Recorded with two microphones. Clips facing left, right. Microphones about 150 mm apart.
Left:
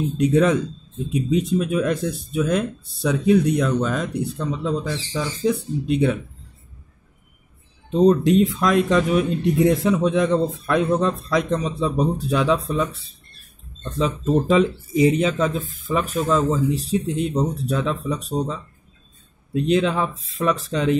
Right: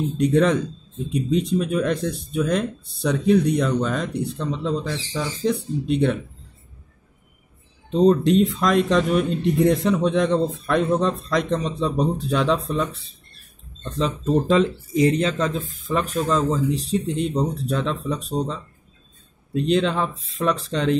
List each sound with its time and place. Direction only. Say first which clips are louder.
0.2 s speech: left 1 dB; 5° left (ahead or behind)
7.9 s speech: left 1 dB; centre (ahead or behind)